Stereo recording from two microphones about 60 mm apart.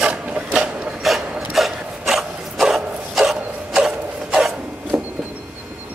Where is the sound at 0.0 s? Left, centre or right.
Centre.